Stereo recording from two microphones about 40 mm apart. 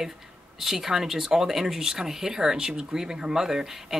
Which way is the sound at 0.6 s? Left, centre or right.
Centre.